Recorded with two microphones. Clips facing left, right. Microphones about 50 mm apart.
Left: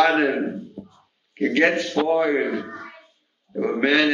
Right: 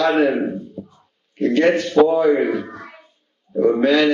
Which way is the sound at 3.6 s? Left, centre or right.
Left.